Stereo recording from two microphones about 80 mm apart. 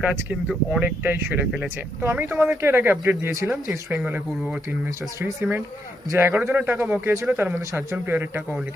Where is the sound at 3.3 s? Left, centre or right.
Right.